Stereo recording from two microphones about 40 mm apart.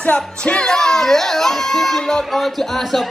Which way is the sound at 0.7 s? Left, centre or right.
Centre.